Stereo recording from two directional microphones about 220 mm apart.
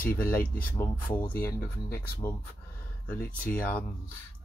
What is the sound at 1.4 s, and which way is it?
Speech, 10° left (ahead or behind).